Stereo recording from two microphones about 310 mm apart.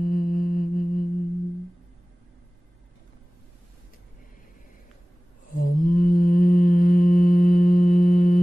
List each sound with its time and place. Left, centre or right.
0.0 s mantra: left
5.5 s mantra: left